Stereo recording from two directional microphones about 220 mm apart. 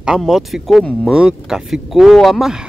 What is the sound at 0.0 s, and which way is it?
Speech, centre (ahead or behind).